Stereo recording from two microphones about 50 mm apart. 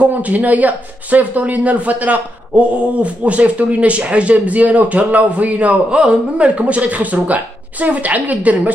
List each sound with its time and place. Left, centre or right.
0.0 s a woman's voice: right